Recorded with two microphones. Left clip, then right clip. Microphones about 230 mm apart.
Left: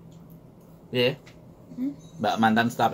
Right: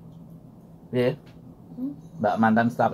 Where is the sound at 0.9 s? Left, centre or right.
Centre.